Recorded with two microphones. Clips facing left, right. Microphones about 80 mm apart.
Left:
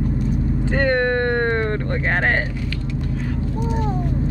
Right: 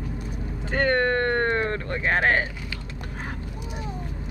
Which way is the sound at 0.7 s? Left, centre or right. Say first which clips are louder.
Left 2 dB; centre.